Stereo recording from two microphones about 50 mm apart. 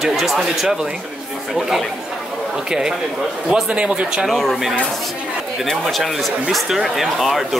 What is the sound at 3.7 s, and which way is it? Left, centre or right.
Speech, right.